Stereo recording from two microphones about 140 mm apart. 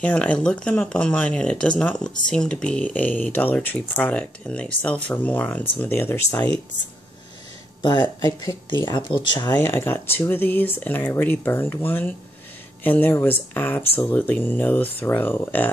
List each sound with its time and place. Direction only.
0.0 s speech: 5° left (ahead or behind)
7.8 s speech: 30° left (ahead or behind)
9.6 s speech: 15° left (ahead or behind)